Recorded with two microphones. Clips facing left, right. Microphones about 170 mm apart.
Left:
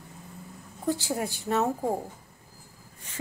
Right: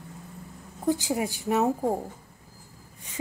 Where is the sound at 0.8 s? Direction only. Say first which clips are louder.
Right 3 dB; 15° right (ahead or behind).